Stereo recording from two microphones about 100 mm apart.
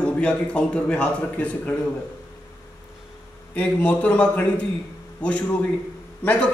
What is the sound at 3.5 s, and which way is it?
A man's voice, 15° left (ahead or behind).